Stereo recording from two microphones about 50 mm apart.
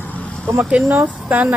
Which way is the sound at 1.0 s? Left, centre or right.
Right.